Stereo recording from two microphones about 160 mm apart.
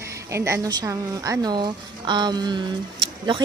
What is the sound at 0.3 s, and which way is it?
Speech, 15° right (ahead or behind).